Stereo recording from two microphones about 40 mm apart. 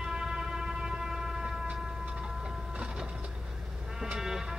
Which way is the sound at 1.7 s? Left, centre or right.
Right.